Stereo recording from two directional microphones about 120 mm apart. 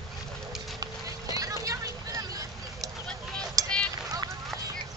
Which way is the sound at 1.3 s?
30° right (ahead or behind).